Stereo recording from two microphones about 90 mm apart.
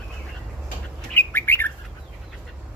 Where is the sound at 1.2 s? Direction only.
25° left (ahead or behind).